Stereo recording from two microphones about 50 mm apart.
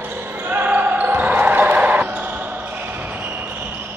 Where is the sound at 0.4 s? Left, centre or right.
Right.